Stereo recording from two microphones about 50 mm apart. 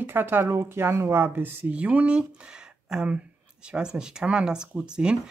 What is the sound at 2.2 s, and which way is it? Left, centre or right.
Speech, centre.